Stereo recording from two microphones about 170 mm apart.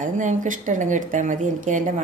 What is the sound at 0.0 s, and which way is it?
A woman's voice, 50° right (ahead or behind).